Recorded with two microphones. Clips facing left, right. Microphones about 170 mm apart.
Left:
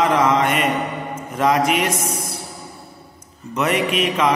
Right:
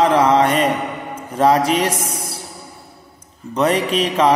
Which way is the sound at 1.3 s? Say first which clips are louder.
Right 3 dB; 30° right (ahead or behind).